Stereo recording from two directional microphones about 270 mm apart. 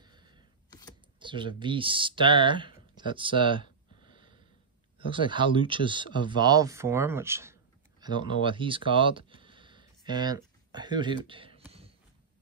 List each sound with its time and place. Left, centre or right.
0.0 s camera: centre
0.7 s camera: centre
1.2 s speech: centre
3.6 s a sound: left
4.9 s speech: centre